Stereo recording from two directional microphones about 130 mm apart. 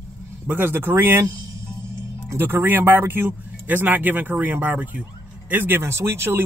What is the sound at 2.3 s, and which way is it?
Speech, 20° right (ahead or behind).